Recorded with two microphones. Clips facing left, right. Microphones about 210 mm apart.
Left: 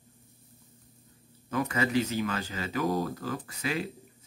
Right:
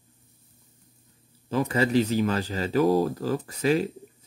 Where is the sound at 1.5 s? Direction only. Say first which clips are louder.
Right 5 dB; 30° right (ahead or behind).